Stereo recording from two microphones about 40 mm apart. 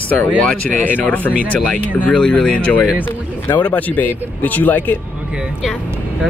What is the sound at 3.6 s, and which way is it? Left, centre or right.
Speech, left.